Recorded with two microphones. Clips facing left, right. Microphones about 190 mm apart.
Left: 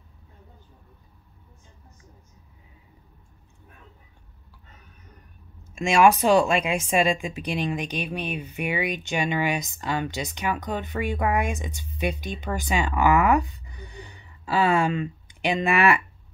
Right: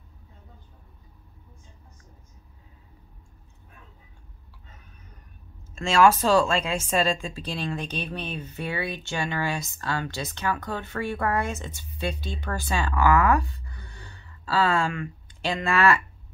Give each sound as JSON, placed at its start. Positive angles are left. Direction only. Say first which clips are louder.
{"t": 5.6, "sound": "a woman's voice", "louder": "left 1 dB", "side_deg": 15}